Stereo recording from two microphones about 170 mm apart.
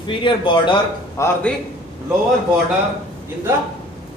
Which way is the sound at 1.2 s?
15° left (ahead or behind).